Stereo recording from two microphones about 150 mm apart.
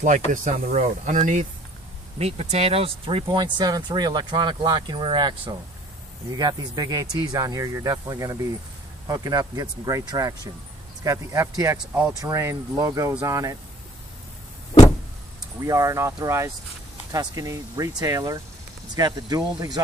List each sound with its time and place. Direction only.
0.3 s speech: 60° right (ahead or behind); by 5.3 s 30° right (ahead or behind)
6.3 s speech: 25° right (ahead or behind)
15.6 s speech: 20° right (ahead or behind)